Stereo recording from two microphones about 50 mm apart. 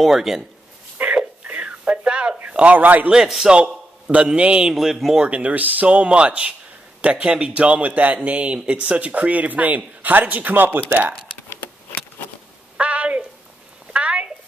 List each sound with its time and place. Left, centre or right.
0.0 s speech: centre
1.1 s a sound: right
2.5 s speech: right
3.1 s speech: centre
3.5 s a sound: right
4.3 s speech: right
4.6 s speech: centre
5.2 s speech: right
12.7 s a sound: right